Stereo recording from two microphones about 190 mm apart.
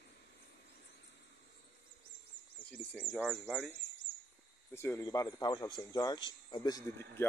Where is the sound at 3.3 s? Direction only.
Centre (ahead or behind).